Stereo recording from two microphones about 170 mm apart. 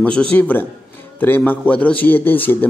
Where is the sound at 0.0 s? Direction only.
5° left (ahead or behind).